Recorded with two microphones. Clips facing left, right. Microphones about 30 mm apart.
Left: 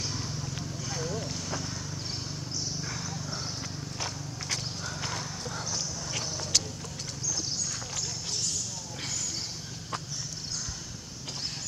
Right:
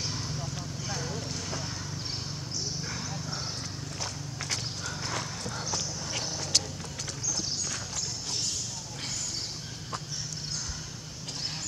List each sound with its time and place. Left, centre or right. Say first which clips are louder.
0.0 s a sound: even; centre
2.8 s dog: even; centre
6.5 s clip-clop: even; centre